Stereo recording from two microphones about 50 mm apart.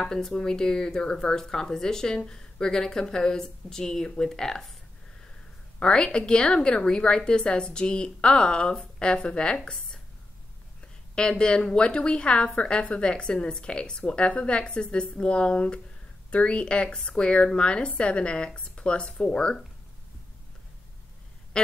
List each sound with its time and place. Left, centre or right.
0.0 s speech: centre
5.8 s speech: centre
11.1 s a woman's voice: centre